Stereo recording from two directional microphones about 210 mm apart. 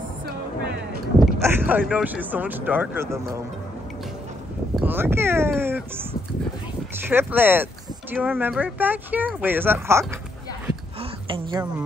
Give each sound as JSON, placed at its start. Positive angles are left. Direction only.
{"t": 1.4, "sound": "speech", "side_deg": -10}
{"t": 4.7, "sound": "speech", "side_deg": -10}
{"t": 7.1, "sound": "speech", "side_deg": -10}
{"t": 11.0, "sound": "a sound", "side_deg": -25}